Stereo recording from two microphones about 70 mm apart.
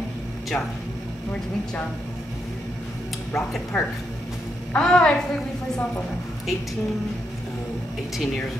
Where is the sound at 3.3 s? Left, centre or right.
Centre.